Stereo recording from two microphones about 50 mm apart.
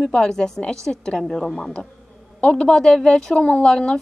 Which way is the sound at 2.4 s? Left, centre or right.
Centre.